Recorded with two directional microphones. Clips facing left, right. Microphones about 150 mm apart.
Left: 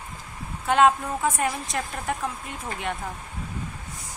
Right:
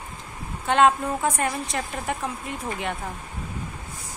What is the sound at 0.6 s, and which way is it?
A woman's voice, centre (ahead or behind).